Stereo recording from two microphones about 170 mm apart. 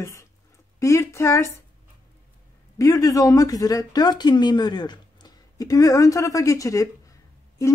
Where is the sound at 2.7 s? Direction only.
20° left (ahead or behind).